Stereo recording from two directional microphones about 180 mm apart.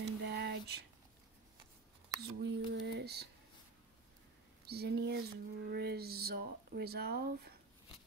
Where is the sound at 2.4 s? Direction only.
80° right.